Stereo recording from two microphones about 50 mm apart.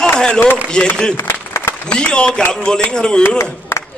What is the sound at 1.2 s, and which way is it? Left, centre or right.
Applause, left.